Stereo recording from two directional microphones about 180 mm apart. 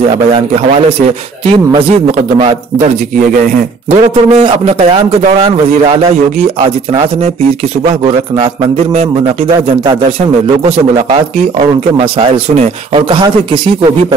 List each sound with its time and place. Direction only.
3.9 s a man's voice: 35° right (ahead or behind)
12.0 s speech: 30° right (ahead or behind)